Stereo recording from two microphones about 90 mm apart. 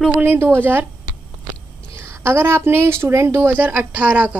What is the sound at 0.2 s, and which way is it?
Speech, 25° right (ahead or behind).